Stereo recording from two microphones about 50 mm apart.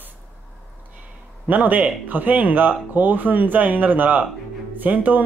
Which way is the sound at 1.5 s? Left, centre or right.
Right.